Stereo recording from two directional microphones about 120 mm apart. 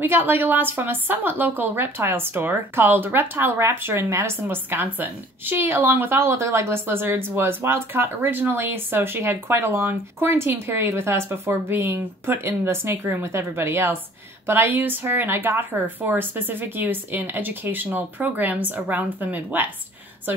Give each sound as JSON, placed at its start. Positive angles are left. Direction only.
{"t": 0.0, "sound": "a woman's voice", "side_deg": -15}